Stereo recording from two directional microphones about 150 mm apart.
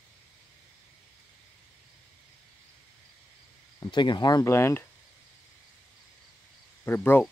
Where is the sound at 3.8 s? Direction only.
30° left (ahead or behind).